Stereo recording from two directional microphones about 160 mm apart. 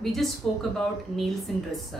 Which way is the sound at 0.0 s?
Centre (ahead or behind).